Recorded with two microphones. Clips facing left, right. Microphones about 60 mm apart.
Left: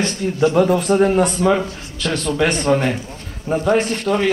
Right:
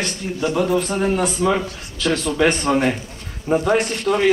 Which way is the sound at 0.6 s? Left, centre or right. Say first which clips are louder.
Left 4 dB; centre.